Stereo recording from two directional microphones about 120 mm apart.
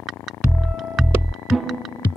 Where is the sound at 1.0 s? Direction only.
Centre (ahead or behind).